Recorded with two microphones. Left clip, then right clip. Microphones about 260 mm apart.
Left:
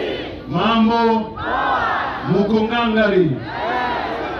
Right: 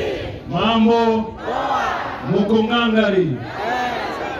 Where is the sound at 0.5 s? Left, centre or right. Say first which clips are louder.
Right 1 dB; centre.